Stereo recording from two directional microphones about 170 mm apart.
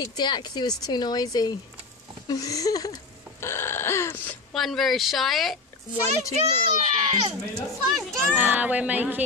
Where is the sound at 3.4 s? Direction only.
15° left (ahead or behind).